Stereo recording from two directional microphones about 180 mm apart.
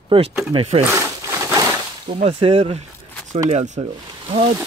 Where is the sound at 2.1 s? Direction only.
30° right (ahead or behind).